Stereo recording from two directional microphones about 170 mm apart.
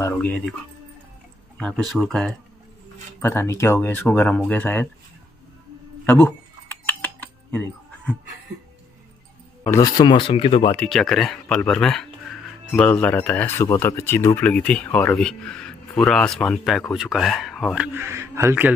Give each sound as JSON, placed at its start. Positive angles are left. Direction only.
{"t": 0.0, "sound": "speech", "side_deg": 10}
{"t": 1.6, "sound": "speech", "side_deg": 0}
{"t": 3.2, "sound": "speech", "side_deg": 15}
{"t": 6.1, "sound": "typing", "side_deg": 10}
{"t": 9.6, "sound": "speech", "side_deg": 20}
{"t": 10.9, "sound": "speech", "side_deg": 0}